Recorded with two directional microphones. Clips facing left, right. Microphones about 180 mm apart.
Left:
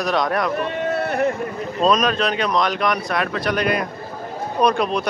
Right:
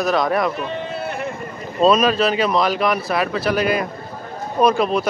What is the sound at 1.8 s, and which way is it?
Speech, 5° right (ahead or behind).